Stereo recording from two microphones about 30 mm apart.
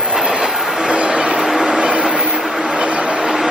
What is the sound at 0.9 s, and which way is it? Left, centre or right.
Vehicle, right.